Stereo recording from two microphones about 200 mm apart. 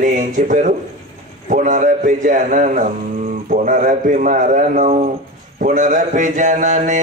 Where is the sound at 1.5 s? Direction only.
40° right (ahead or behind).